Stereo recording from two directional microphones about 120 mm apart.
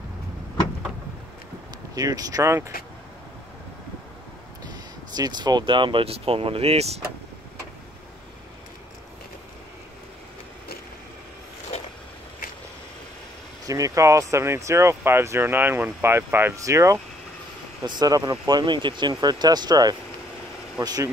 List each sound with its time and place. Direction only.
2.0 s speech: 30° right (ahead or behind)
5.1 s speech: 35° right (ahead or behind); by 7.0 s 60° right (ahead or behind)
13.7 s speech: 30° right (ahead or behind)